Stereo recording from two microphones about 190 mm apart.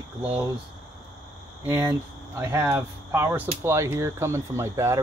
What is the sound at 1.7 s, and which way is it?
Speech, 15° right (ahead or behind).